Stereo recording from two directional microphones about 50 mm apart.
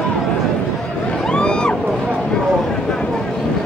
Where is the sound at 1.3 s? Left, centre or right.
Centre.